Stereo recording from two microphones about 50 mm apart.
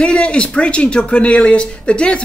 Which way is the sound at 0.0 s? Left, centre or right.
Left.